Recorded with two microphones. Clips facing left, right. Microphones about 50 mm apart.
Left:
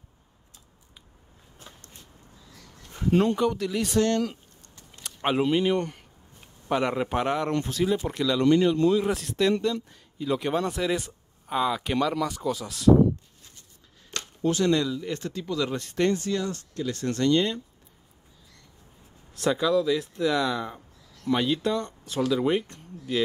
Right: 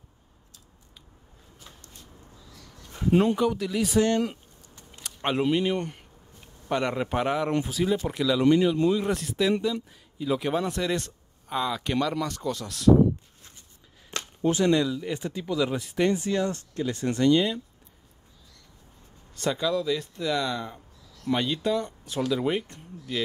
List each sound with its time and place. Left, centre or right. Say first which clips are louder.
1.6 s a sound: left 2 dB; left
2.9 s speech: right 1 dB; centre
4.0 s a sound: even; centre
5.0 s speech: left 1 dB; centre
6.7 s speech: left 1 dB; centre
14.1 s speech: right 1 dB; centre
19.3 s speech: left 3 dB; centre